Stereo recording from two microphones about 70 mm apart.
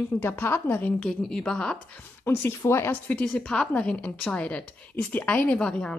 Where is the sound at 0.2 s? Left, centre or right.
Left.